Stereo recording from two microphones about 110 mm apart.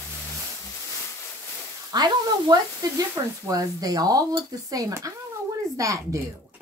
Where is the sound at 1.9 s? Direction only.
40° right (ahead or behind).